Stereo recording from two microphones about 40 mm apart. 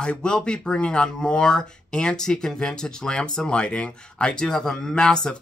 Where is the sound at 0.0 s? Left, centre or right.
Left.